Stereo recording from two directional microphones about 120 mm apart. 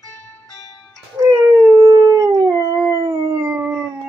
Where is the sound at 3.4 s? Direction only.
20° right (ahead or behind).